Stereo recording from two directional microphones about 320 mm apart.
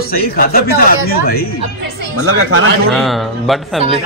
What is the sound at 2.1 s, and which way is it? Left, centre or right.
Speech, right.